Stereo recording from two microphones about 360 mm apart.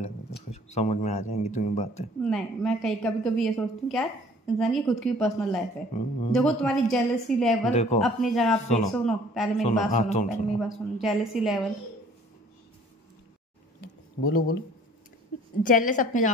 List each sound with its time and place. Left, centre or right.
0.0 s speech: centre
2.2 s a woman's voice: centre
7.7 s speech: centre
8.0 s a woman's voice: centre
8.5 s a woman's voice: centre
8.9 s a woman's voice: centre
9.5 s a woman's voice: centre
10.6 s a woman's voice: centre
13.7 s a sound: left
15.6 s a woman's voice: left